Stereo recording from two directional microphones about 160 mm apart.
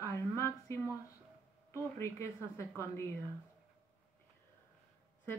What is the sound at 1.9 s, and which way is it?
Speech, 15° left (ahead or behind).